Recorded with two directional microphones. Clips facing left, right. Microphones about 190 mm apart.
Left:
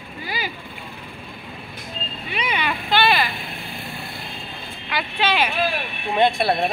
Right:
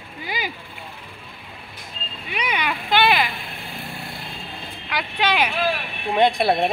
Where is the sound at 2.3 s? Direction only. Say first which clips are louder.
Even; 10° right (ahead or behind).